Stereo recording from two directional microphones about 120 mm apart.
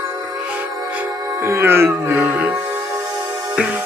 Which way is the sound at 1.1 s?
30° right (ahead or behind).